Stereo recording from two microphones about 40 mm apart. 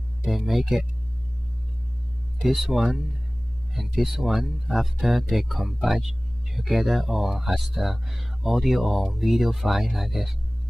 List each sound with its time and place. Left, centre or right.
0.3 s speech: centre
2.4 s speech: centre